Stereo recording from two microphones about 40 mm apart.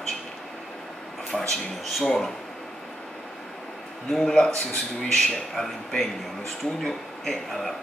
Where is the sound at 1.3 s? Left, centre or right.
Centre.